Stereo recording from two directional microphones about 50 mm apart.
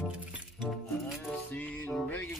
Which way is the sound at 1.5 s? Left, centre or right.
Left.